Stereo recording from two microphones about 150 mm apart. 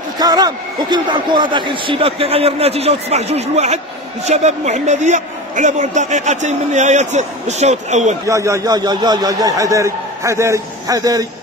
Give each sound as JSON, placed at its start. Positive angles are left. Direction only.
{"t": 0.2, "sound": "a man's voice", "side_deg": -25}
{"t": 8.3, "sound": "a man's voice", "side_deg": -20}